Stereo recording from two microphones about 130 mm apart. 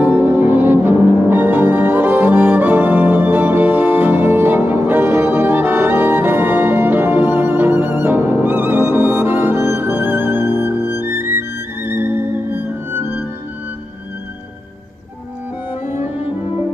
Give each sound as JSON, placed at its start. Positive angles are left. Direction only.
{"t": 0.0, "sound": "music", "side_deg": -15}